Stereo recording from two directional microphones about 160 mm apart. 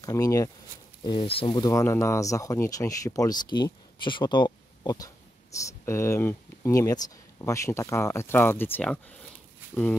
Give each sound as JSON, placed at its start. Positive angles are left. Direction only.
{"t": 0.0, "sound": "speech", "side_deg": 20}
{"t": 1.0, "sound": "speech", "side_deg": 35}